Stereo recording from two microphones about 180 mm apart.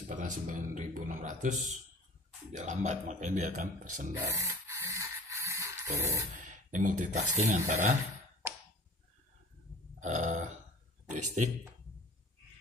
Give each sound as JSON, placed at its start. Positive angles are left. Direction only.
{"t": 0.1, "sound": "speech", "side_deg": -45}
{"t": 4.3, "sound": "a sound", "side_deg": -15}
{"t": 6.3, "sound": "speech", "side_deg": -45}
{"t": 9.9, "sound": "burping", "side_deg": -40}
{"t": 11.1, "sound": "speech", "side_deg": -45}